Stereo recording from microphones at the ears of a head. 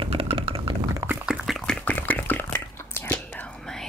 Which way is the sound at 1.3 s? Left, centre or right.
Centre.